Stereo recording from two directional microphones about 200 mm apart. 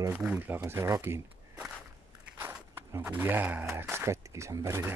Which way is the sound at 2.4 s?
10° right (ahead or behind).